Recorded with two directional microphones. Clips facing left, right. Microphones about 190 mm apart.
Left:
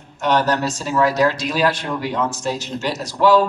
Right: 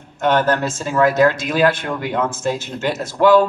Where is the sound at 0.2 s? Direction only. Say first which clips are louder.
Right 2 dB; 50° right (ahead or behind).